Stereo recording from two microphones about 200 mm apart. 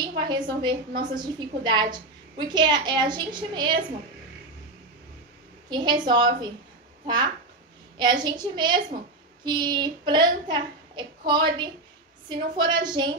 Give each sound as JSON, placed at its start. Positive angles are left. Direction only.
{"t": 0.0, "sound": "a woman's voice", "side_deg": -20}
{"t": 5.7, "sound": "a woman's voice", "side_deg": -20}
{"t": 8.0, "sound": "a woman's voice", "side_deg": -20}